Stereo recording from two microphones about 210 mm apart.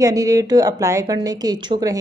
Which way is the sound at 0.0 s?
15° right (ahead or behind).